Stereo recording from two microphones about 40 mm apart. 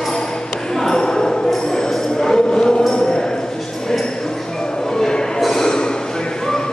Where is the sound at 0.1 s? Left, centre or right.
Centre.